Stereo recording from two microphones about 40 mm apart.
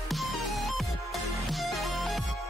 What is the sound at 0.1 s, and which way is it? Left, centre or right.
Music, centre.